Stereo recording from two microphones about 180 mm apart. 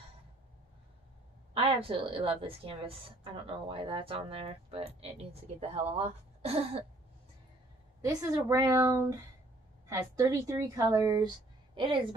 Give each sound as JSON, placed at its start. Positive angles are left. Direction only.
{"t": 1.5, "sound": "speech", "side_deg": -30}
{"t": 8.0, "sound": "speech", "side_deg": -20}